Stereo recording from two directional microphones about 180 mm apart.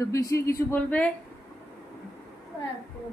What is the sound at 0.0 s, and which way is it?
Speech, 15° left (ahead or behind).